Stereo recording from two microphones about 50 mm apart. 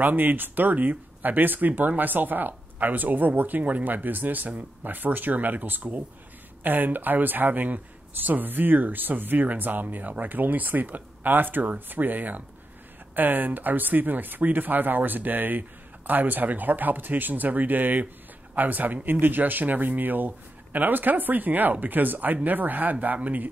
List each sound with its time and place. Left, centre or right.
0.0 s speech: right